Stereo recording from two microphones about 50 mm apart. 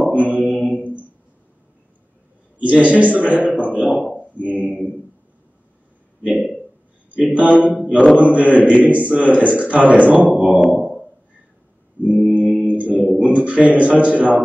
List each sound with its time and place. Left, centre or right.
0.0 s mantra: right
0.7 s a sound: right
2.6 s a man's voice: right
7.2 s a man's voice: right
10.7 s a sound: right
12.0 s mantra: right
13.2 s a man's voice: right